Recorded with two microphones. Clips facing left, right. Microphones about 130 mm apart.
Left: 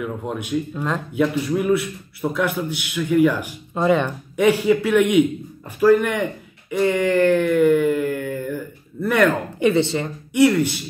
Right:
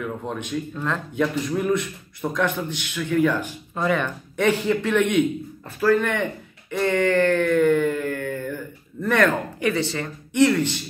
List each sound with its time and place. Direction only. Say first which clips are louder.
0.0 s a man's voice: left 2 dB; 10° left (ahead or behind)
6.7 s a sound: left 2 dB; 10° left (ahead or behind)
9.0 s a man's voice: left 2 dB; 10° left (ahead or behind)
9.6 s speech: left 6 dB; 20° left (ahead or behind)